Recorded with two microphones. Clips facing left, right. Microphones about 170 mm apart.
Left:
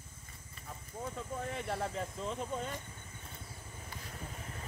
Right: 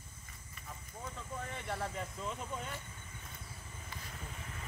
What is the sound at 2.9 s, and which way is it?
Vehicle, 30° left (ahead or behind).